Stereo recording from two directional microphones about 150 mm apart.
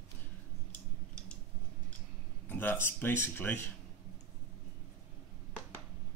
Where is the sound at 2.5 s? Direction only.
15° left (ahead or behind).